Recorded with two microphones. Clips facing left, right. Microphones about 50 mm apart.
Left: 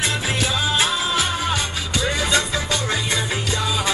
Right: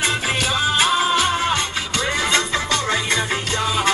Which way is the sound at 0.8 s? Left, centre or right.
Right.